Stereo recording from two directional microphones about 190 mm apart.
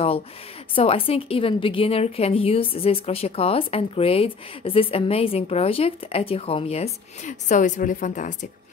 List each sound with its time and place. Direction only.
0.7 s a woman's voice: 30° left (ahead or behind)